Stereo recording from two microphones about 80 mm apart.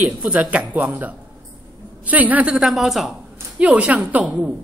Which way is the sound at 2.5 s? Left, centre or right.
Centre.